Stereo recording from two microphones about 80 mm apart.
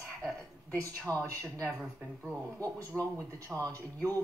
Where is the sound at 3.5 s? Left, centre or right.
Centre.